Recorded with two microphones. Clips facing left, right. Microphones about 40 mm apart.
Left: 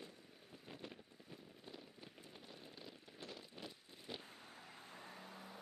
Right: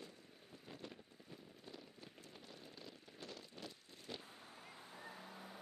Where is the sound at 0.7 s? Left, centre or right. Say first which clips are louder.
Even; centre.